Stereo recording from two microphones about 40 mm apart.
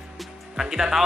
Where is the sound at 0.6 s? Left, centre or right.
Centre.